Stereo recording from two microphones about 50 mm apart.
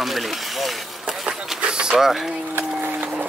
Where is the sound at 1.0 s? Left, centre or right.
Centre.